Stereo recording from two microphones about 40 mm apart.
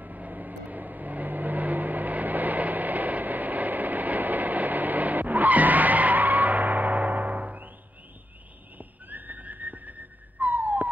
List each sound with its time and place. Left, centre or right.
0.0 s vehicle: right
8.7 s whistling: right
10.4 s a sound: right